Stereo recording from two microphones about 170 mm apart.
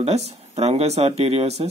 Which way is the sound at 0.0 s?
40° right (ahead or behind).